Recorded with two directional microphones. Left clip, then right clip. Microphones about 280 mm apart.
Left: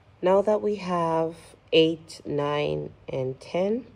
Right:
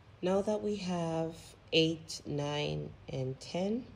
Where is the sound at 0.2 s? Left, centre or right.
Centre.